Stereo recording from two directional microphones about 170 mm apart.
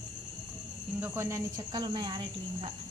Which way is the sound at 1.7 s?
25° right (ahead or behind).